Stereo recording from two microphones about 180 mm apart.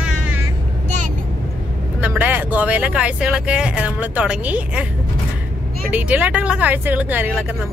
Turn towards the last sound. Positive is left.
turn(degrees=-10)  # may be behind; listen again after turning